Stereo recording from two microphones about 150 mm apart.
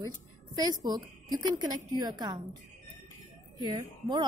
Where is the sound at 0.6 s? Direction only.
25° right (ahead or behind).